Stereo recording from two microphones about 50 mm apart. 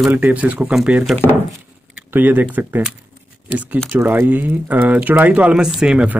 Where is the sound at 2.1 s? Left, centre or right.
Right.